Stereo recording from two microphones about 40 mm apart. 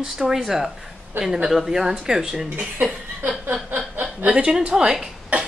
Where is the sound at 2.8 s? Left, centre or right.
Right.